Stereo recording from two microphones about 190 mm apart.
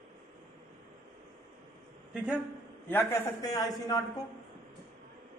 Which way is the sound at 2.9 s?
10° left (ahead or behind).